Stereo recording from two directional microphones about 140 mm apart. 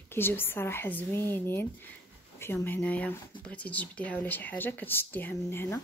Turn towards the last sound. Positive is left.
turn(degrees=15)  # may be behind; listen again after turning